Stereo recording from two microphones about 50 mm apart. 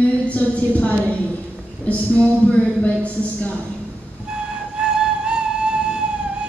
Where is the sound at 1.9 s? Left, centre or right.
Left.